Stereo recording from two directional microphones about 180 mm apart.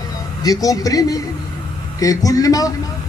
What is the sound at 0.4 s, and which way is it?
A man's voice, 20° left (ahead or behind).